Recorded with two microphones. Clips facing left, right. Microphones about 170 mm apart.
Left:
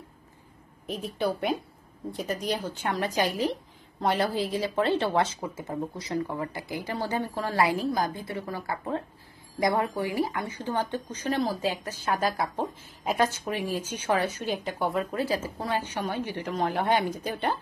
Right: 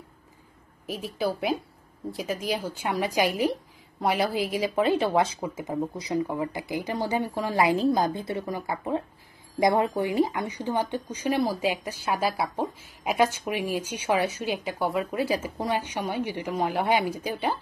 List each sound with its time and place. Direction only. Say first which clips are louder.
0.8 s a woman's voice: even; 5° right (ahead or behind)